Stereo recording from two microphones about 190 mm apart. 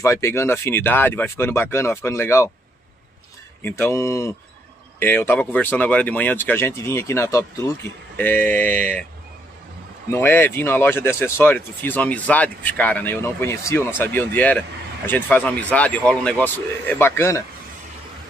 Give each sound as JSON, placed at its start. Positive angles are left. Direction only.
{"t": 0.0, "sound": "speech", "side_deg": 15}
{"t": 3.6, "sound": "speech", "side_deg": 15}
{"t": 10.1, "sound": "speech", "side_deg": 10}